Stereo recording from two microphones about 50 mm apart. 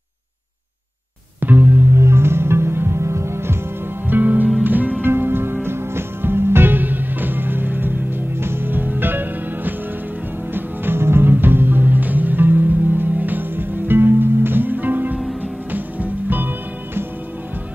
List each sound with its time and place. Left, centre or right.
1.4 s music: right
2.0 s music: right
4.1 s music: right
5.0 s music: right